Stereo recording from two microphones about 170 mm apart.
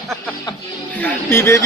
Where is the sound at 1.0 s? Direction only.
15° left (ahead or behind).